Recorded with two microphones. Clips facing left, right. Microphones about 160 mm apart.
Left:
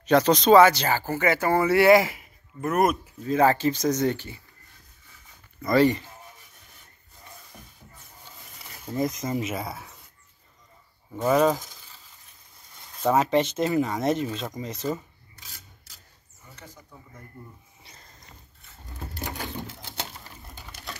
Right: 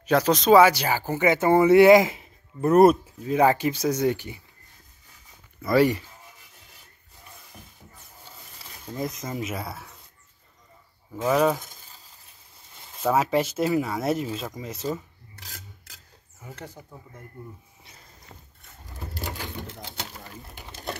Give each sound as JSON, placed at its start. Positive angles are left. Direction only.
{"t": 0.0, "sound": "speech", "side_deg": -5}
{"t": 3.3, "sound": "speech", "side_deg": -15}
{"t": 5.6, "sound": "speech", "side_deg": -10}
{"t": 7.5, "sound": "music", "side_deg": -5}
{"t": 8.5, "sound": "speech", "side_deg": 0}
{"t": 11.2, "sound": "speech", "side_deg": 0}
{"t": 11.6, "sound": "a sound", "side_deg": -50}
{"t": 13.0, "sound": "speech", "side_deg": -5}
{"t": 15.3, "sound": "filing", "side_deg": -75}
{"t": 16.4, "sound": "speech", "side_deg": -90}
{"t": 17.8, "sound": "a sound", "side_deg": -5}